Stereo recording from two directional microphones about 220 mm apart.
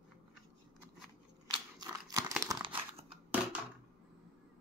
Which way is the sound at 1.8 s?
15° right (ahead or behind).